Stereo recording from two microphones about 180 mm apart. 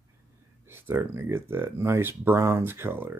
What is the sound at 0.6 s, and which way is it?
Speech, 10° right (ahead or behind).